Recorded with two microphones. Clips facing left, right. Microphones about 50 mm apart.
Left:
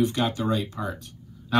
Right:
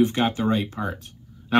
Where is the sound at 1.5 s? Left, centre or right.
Right.